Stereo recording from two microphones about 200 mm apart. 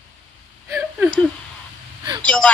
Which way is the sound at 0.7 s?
10° right (ahead or behind).